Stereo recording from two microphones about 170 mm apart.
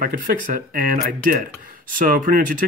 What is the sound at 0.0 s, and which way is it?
Speech, 55° right (ahead or behind).